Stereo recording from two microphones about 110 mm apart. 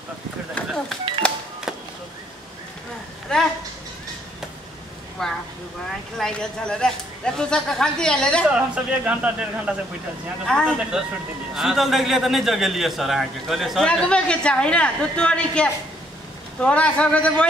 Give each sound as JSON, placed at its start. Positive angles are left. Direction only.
{"t": 1.2, "sound": "music", "side_deg": 10}
{"t": 3.3, "sound": "a woman's voice", "side_deg": 10}
{"t": 5.2, "sound": "a sound", "side_deg": 5}
{"t": 6.1, "sound": "speech", "side_deg": 5}
{"t": 8.5, "sound": "a man's voice", "side_deg": -10}
{"t": 10.4, "sound": "speech", "side_deg": 5}
{"t": 10.9, "sound": "a man's voice", "side_deg": -5}